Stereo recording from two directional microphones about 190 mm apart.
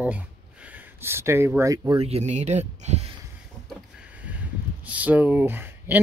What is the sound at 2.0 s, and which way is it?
Speech, 35° right (ahead or behind).